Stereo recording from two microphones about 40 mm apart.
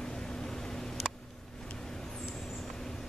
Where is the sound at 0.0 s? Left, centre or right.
Centre.